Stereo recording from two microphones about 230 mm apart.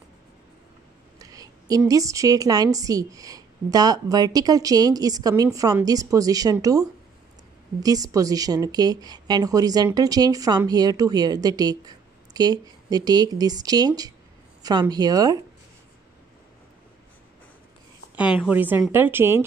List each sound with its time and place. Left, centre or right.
1.2 s a sound: centre
1.8 s speech: centre
18.1 s speech: centre